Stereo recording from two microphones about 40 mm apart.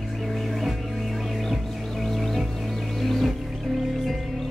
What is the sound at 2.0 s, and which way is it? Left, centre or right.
Music, centre.